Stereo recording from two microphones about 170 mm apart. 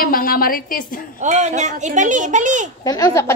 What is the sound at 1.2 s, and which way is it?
A child's voice, 45° right (ahead or behind).